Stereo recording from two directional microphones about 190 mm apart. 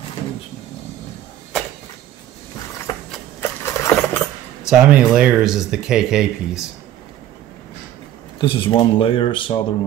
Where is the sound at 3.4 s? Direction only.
15° left (ahead or behind).